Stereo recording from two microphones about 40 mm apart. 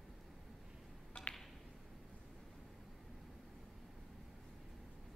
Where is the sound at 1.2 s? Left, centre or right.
Left.